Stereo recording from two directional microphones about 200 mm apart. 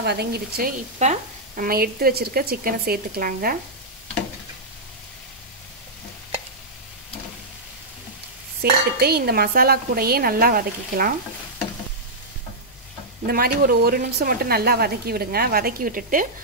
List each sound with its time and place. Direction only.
0.0 s a woman's voice: 55° right (ahead or behind)
8.6 s a woman's voice: 50° right (ahead or behind)
13.3 s a woman's voice: 50° right (ahead or behind)